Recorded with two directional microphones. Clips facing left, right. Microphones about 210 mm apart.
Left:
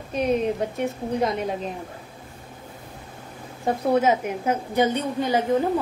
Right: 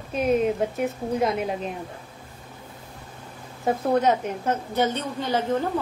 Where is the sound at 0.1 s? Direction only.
Centre (ahead or behind).